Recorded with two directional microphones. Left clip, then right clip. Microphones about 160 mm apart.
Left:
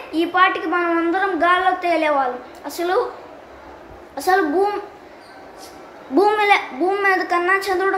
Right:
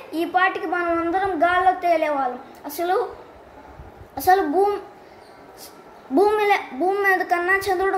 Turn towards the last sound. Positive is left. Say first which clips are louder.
# left 2 dB
turn(degrees=-25)  # may be behind; listen again after turning